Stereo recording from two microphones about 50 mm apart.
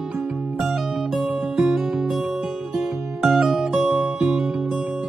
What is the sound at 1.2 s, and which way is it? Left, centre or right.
Music, centre.